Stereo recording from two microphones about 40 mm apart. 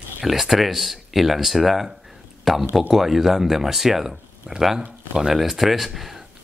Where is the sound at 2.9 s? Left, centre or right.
Centre.